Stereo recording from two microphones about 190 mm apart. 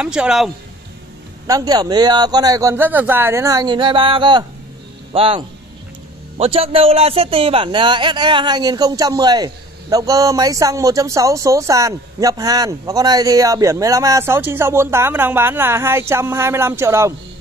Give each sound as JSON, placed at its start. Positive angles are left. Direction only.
{"t": 0.0, "sound": "speech", "side_deg": -5}
{"t": 1.5, "sound": "speech", "side_deg": -20}